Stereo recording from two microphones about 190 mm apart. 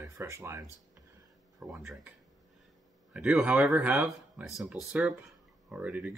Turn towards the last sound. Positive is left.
turn(degrees=-5)  # may be behind; listen again after turning